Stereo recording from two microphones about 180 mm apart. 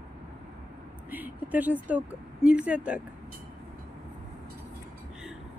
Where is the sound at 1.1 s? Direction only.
10° right (ahead or behind).